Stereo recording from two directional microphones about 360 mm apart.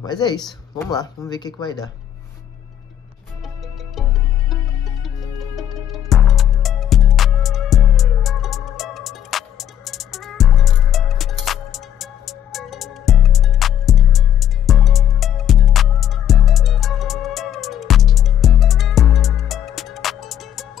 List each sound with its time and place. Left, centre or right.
0.0 s speech: centre
3.9 s music: centre